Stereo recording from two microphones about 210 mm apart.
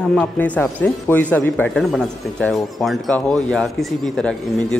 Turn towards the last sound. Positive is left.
turn(degrees=5)  # may be behind; listen again after turning